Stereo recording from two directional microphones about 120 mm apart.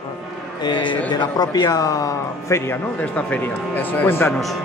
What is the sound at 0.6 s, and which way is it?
A man's voice, 40° left (ahead or behind).